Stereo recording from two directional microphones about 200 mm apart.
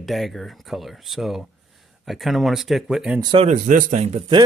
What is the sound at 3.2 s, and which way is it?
Speech, 25° right (ahead or behind).